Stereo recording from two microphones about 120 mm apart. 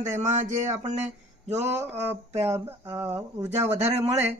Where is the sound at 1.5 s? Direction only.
65° right (ahead or behind).